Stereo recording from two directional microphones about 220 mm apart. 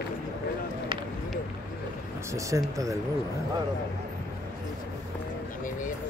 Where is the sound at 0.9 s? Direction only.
25° right (ahead or behind).